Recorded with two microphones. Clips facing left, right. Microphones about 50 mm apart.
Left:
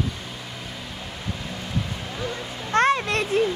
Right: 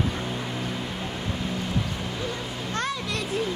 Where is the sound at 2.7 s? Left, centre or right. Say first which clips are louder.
Left 11 dB; left.